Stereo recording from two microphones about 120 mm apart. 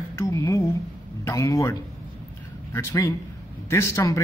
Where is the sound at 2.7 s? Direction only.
25° left (ahead or behind).